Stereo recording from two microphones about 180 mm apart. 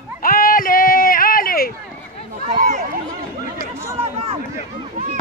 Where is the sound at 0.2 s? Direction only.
50° left (ahead or behind).